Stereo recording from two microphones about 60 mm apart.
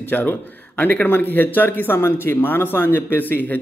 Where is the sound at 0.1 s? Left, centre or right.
Left.